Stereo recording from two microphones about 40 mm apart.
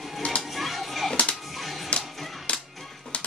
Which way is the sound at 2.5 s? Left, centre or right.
Left.